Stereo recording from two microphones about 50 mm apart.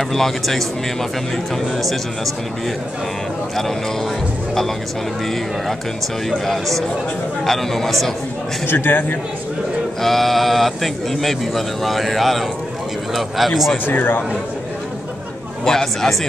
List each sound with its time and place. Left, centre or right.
0.1 s speech: centre
1.8 s speech: centre
6.4 s speech: centre
8.6 s a man's voice: left
10.0 s speech: centre
13.8 s speech: left
15.6 s speech: centre